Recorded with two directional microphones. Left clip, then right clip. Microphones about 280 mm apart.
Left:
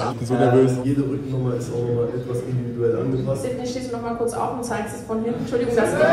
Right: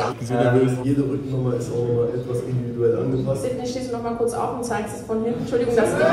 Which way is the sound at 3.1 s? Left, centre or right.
Centre.